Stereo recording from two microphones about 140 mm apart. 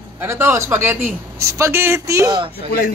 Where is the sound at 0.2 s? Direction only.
15° right (ahead or behind).